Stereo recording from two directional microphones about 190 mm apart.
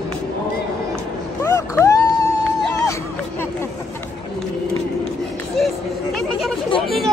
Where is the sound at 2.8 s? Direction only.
15° left (ahead or behind).